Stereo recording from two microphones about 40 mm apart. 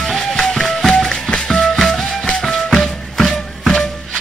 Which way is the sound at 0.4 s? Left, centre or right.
Centre.